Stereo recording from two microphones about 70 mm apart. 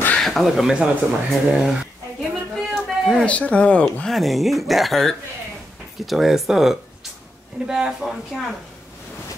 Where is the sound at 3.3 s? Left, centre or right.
Centre.